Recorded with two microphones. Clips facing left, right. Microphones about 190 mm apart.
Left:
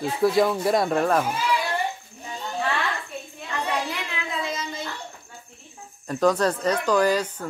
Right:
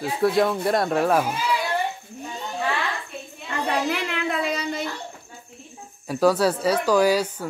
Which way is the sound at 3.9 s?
65° right (ahead or behind).